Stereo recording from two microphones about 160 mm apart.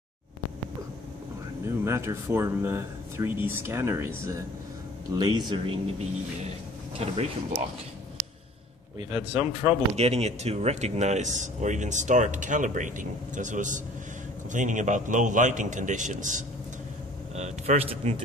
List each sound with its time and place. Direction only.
1.7 s speech: 15° right (ahead or behind)
7.0 s speech: 40° right (ahead or behind)
9.3 s speech: 10° right (ahead or behind)
9.9 s speech: 40° right (ahead or behind)
17.4 s speech: 40° right (ahead or behind)